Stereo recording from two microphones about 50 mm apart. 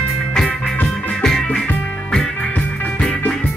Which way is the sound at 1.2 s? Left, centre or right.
Centre.